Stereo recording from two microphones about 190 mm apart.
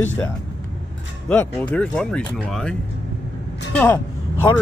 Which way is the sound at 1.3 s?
10° left (ahead or behind).